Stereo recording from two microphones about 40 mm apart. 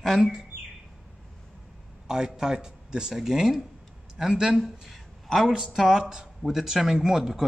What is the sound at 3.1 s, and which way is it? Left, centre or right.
Speech, centre.